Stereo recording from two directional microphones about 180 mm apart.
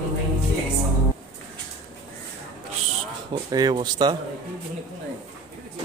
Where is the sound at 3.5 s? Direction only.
20° right (ahead or behind).